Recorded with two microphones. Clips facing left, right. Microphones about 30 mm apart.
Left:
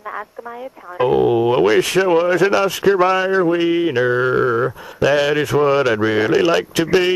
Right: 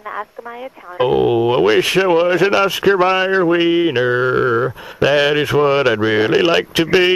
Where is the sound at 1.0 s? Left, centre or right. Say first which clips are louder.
Right 1 dB; right.